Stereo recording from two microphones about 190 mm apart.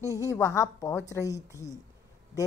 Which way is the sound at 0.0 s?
15° left (ahead or behind).